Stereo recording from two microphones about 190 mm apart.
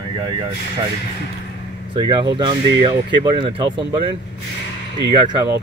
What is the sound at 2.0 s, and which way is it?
Speech, 25° right (ahead or behind).